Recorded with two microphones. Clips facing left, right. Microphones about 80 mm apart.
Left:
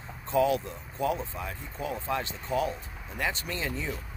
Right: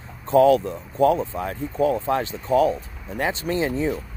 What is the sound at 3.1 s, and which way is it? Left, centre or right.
Speech, right.